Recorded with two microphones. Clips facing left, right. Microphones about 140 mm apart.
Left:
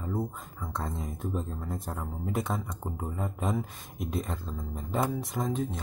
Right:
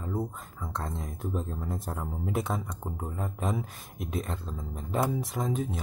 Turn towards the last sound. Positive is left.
turn(degrees=0)  # may be behind; listen again after turning